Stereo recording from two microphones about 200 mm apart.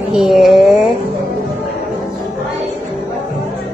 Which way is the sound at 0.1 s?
Centre (ahead or behind).